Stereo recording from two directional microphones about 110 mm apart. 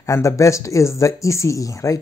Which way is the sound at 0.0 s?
30° left (ahead or behind).